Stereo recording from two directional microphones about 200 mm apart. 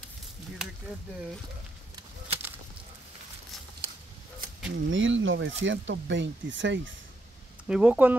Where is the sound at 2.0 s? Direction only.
30° right (ahead or behind).